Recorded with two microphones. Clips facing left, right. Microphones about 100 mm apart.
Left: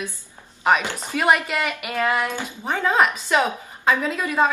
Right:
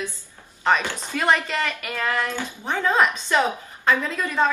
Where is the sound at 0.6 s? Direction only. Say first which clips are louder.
Left 2 dB; 15° left (ahead or behind).